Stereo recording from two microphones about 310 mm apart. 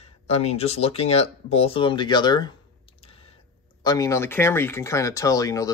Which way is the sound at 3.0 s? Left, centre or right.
Centre.